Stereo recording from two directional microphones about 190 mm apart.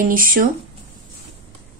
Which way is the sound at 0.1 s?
50° right (ahead or behind).